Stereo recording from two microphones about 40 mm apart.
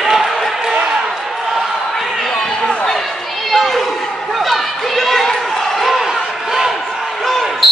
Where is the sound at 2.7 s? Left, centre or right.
Centre.